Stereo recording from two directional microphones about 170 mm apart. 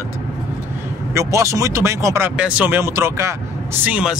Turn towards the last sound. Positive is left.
turn(degrees=-5)  # may be behind; listen again after turning